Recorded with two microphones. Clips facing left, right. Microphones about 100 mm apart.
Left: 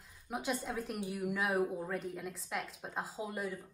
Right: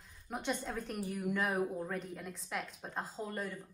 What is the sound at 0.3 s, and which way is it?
A woman's voice, centre (ahead or behind).